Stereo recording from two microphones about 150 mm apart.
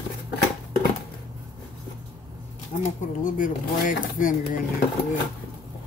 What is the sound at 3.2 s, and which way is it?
Speech, 60° left (ahead or behind).